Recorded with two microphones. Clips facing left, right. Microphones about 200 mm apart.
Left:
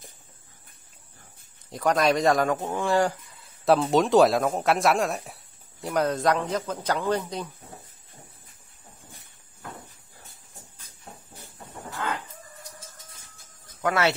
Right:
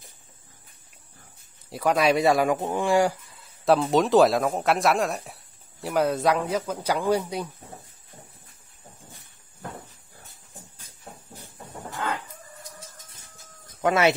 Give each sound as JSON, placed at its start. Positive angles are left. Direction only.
{"t": 1.7, "sound": "speech", "side_deg": -5}
{"t": 3.6, "sound": "speech", "side_deg": 0}
{"t": 13.7, "sound": "speech", "side_deg": -20}